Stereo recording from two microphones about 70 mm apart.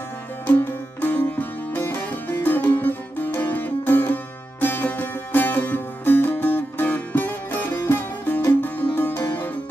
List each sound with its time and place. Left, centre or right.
0.5 s music: left